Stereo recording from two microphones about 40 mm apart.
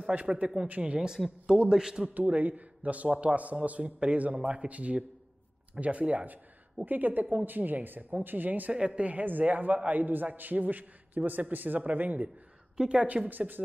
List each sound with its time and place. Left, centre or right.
0.1 s speech: right
0.9 s a man's voice: centre
2.1 s speech: right
6.9 s a man's voice: right
8.7 s speech: right
9.2 s a man's voice: right
12.7 s a woman's voice: right
13.0 s speech: right